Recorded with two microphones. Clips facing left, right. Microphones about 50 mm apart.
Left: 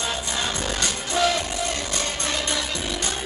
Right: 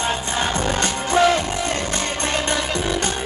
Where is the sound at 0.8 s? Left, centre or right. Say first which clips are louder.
Right 6 dB; right.